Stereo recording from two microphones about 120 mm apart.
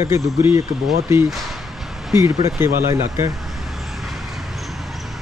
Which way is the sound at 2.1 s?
20° right (ahead or behind).